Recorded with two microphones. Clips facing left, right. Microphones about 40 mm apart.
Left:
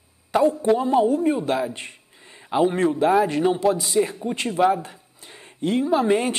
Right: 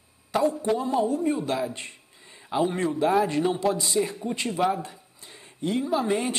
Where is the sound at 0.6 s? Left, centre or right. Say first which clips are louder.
Left 6 dB; centre.